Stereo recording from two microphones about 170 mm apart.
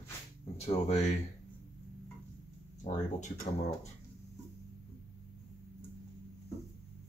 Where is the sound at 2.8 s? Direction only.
45° left (ahead or behind).